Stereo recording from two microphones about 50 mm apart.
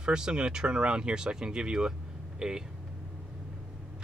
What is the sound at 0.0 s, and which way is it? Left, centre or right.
Speech, centre.